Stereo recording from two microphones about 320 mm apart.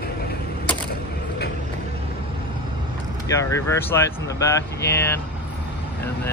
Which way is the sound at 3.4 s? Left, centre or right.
Centre.